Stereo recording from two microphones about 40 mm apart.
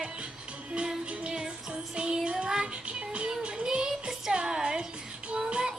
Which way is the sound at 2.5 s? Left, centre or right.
Right.